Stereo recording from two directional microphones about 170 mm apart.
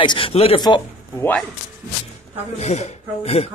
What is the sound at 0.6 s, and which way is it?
Speech, 25° left (ahead or behind).